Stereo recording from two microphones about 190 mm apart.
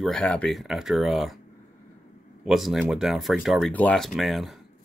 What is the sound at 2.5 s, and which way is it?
Speech, centre (ahead or behind).